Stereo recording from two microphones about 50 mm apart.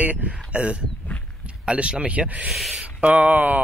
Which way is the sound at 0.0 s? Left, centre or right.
Right.